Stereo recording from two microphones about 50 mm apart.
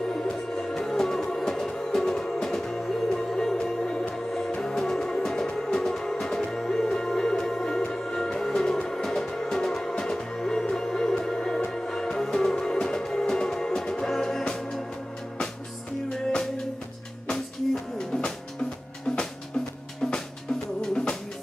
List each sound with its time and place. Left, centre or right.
0.1 s music: centre
16.1 s music: centre
17.9 s music: centre
20.9 s music: centre